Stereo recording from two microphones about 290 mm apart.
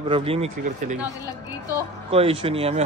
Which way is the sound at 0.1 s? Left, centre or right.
Centre.